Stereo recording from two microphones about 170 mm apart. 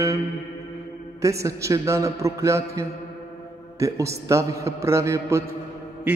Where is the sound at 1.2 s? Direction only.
20° right (ahead or behind).